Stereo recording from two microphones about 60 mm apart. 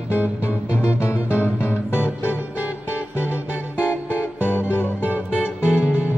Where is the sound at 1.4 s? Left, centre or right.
Left.